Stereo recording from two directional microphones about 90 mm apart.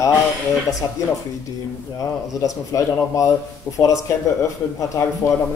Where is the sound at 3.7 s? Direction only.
20° left (ahead or behind).